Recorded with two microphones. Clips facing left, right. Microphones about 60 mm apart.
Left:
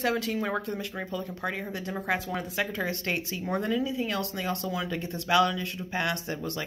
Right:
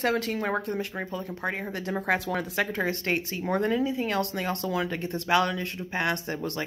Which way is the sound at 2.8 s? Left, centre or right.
Right.